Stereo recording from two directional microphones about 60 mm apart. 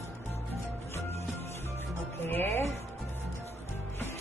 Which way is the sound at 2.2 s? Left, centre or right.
Left.